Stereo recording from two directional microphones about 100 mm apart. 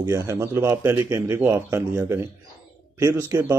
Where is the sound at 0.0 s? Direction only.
30° right (ahead or behind).